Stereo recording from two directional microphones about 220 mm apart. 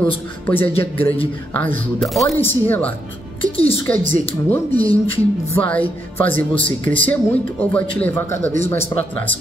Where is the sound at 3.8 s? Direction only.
5° left (ahead or behind).